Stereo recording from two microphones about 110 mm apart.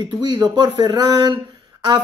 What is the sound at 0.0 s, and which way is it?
Speech, 40° right (ahead or behind).